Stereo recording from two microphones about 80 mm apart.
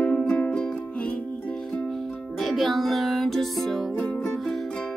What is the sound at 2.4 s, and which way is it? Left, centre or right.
Music, centre.